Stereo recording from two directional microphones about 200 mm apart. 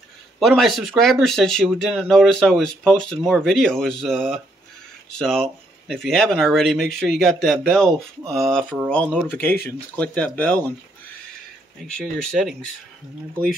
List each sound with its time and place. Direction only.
0.4 s speech: centre (ahead or behind)
12.0 s speech: centre (ahead or behind)